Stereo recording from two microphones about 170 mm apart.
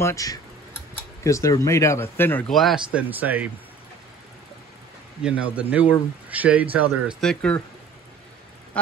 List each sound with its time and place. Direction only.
0.0 s speech: 20° left (ahead or behind)
2.5 s speech: centre (ahead or behind)
5.2 s speech: 10° right (ahead or behind)
7.2 s speech: 5° left (ahead or behind)